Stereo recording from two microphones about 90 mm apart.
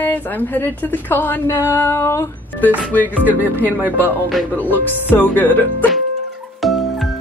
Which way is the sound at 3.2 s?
20° right (ahead or behind).